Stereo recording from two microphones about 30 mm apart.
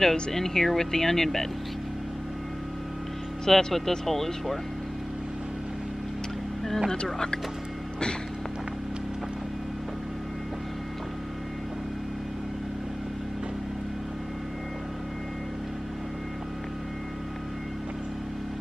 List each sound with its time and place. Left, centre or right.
0.0 s speech: centre
3.4 s speech: centre
6.9 s speech: left